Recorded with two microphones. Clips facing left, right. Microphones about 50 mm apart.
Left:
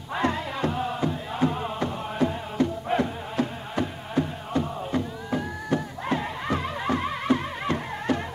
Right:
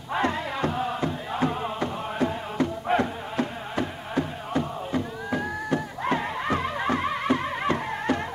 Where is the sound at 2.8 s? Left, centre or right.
Right.